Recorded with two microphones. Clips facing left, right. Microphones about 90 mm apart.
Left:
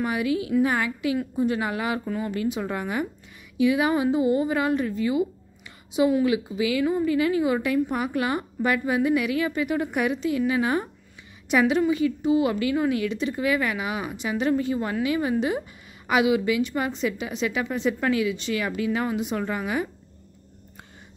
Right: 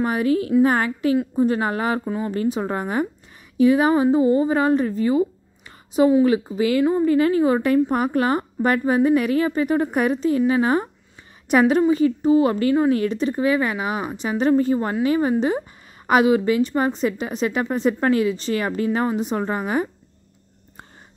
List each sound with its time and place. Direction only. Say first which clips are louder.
0.0 s a woman's voice: right 5 dB; 40° right (ahead or behind)
2.0 s speech: right 3 dB; 25° right (ahead or behind)
2.3 s a woman's voice: right 6 dB; 35° right (ahead or behind)
6.2 s a woman's voice: right 5 dB; 40° right (ahead or behind)